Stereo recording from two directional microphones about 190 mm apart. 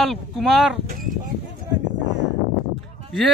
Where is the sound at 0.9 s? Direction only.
45° right (ahead or behind).